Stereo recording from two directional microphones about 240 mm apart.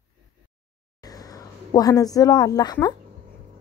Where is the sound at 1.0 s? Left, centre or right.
Centre.